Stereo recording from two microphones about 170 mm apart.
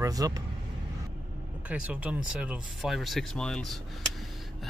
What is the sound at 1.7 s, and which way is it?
Speech, 10° right (ahead or behind).